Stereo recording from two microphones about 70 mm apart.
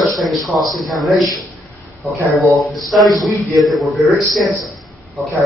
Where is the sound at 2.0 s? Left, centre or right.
Left.